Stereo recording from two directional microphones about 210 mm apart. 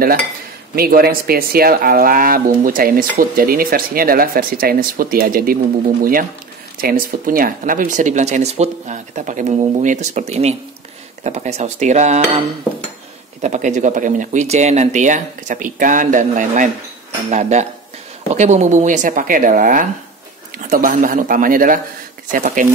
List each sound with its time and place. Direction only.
0.7 s speech: 45° right (ahead or behind)
6.8 s speech: 45° right (ahead or behind)
13.4 s speech: 35° right (ahead or behind)